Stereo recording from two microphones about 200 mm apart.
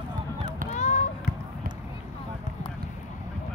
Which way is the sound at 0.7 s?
40° left (ahead or behind).